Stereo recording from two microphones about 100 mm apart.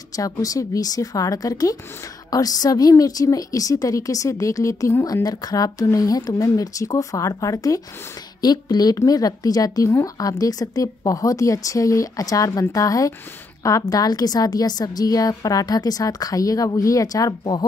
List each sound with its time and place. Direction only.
0.1 s a woman's voice: 35° left (ahead or behind)